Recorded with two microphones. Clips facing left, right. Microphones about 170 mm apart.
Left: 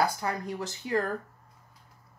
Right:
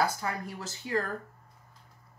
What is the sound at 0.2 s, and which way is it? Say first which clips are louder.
Speech: left 3 dB; 20° left (ahead or behind).